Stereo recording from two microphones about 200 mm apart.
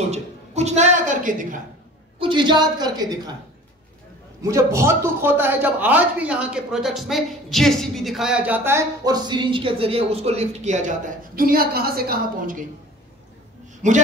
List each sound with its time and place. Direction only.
0.1 s a woman's voice: 35° right (ahead or behind)
2.1 s a woman's voice: 25° right (ahead or behind)
4.4 s a man's voice: 15° right (ahead or behind); by 12.6 s 45° right (ahead or behind)